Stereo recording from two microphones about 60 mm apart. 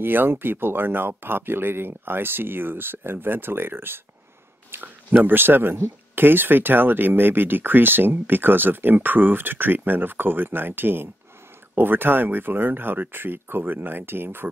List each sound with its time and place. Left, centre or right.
0.0 s speech: right